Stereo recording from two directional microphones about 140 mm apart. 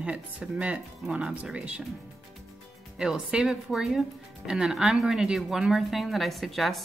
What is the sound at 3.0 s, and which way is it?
A woman's voice, 5° right (ahead or behind).